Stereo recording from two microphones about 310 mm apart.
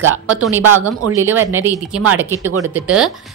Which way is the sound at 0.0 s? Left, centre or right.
Right.